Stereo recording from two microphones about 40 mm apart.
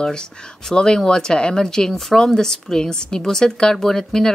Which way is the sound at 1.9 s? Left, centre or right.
Centre.